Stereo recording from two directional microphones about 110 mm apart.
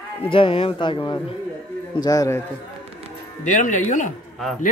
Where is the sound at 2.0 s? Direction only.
35° left (ahead or behind).